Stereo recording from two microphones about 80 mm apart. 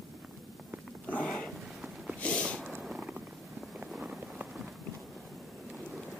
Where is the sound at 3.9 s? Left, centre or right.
Centre.